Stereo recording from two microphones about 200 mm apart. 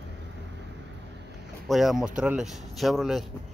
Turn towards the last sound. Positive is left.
turn(degrees=0)  # may be behind; listen again after turning